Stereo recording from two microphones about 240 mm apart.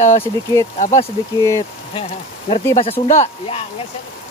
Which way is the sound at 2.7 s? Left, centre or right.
Left.